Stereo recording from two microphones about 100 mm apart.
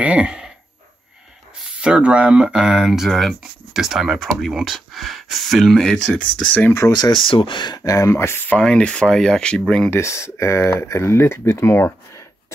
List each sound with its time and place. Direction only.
0.0 s speech: 10° right (ahead or behind)
1.6 s speech: 10° right (ahead or behind); by 6.7 s 15° left (ahead or behind)
7.0 s speech: 50° left (ahead or behind); by 9.8 s 10° left (ahead or behind)
9.8 s speech: 25° left (ahead or behind)